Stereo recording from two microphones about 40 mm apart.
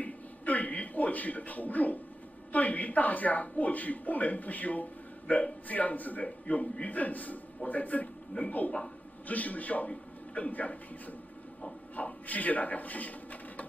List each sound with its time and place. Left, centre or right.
0.0 s a sound: left
2.5 s a man's voice: left
6.2 s a man's voice: left